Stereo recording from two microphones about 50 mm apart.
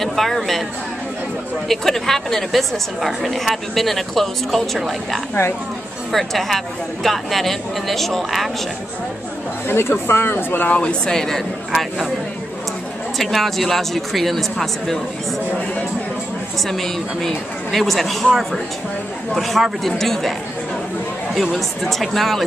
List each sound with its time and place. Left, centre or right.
0.0 s speech: centre
1.7 s a woman's voice: centre
9.7 s speech: left
10.7 s speech: left
13.2 s a woman's voice: centre
16.6 s a woman's voice: centre
21.4 s a woman's voice: centre